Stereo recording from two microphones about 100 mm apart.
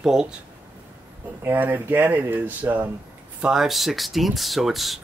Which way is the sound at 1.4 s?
20° right (ahead or behind).